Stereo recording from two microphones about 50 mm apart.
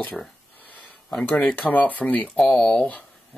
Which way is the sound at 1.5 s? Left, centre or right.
Left.